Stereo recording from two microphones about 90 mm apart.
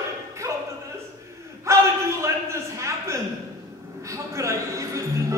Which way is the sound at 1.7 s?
30° right (ahead or behind).